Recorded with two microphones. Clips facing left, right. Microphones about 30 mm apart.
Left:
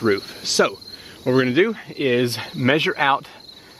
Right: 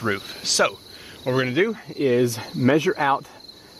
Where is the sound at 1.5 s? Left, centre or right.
Left.